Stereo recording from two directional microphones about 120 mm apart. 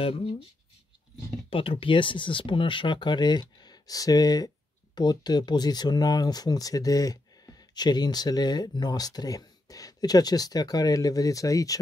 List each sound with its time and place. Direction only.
0.0 s speech: 50° left (ahead or behind)
1.5 s speech: 50° left (ahead or behind); by 11.8 s 30° left (ahead or behind)